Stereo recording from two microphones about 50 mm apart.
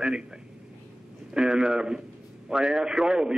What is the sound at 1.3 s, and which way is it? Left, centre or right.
A man's voice, centre.